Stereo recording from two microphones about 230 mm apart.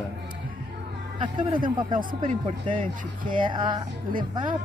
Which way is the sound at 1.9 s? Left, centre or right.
Right.